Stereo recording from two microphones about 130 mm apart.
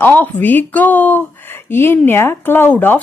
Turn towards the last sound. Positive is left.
turn(degrees=15)  # may be behind; listen again after turning